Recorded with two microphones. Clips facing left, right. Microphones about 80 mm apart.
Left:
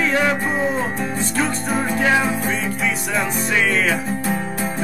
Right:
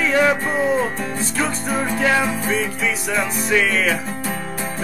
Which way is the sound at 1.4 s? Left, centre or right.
Centre.